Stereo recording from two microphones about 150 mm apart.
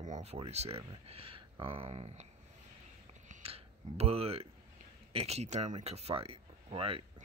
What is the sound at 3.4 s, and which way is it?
Speech, 40° right (ahead or behind).